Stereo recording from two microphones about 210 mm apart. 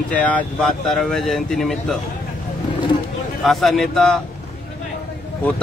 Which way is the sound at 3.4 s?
Centre (ahead or behind).